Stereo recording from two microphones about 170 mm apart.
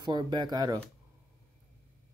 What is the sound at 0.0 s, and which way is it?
Speech, 25° right (ahead or behind).